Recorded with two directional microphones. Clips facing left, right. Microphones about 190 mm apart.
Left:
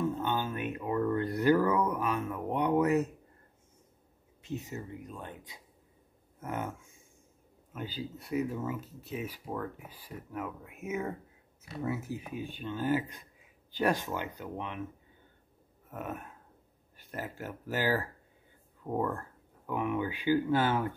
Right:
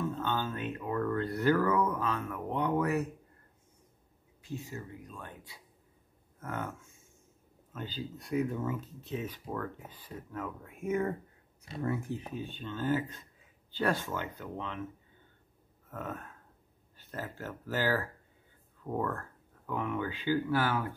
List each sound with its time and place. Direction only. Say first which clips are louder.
0.0 s speech: left 2 dB; 15° left (ahead or behind)
4.4 s speech: left 2 dB; 20° left (ahead or behind)
7.7 s speech: left 1 dB; 10° left (ahead or behind)
15.9 s speech: left 1 dB; 15° left (ahead or behind)